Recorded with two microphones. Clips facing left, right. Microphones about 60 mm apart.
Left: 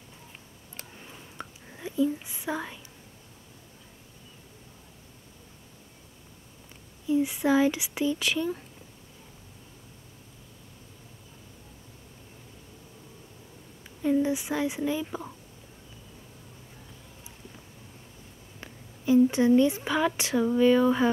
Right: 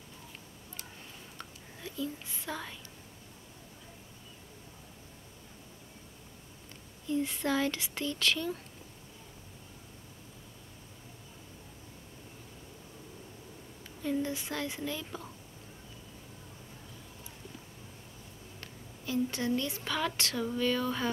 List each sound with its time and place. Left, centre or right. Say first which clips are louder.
1.4 s speech: left 7 dB; centre
7.1 s speech: left 7 dB; centre
14.0 s speech: left 8 dB; centre
18.6 s a woman's voice: left 5 dB; centre